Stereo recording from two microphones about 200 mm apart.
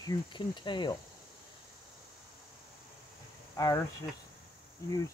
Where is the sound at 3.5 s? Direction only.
15° left (ahead or behind).